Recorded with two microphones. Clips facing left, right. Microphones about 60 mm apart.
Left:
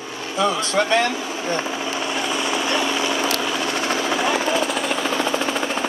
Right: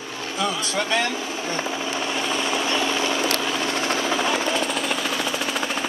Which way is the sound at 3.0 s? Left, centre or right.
Centre.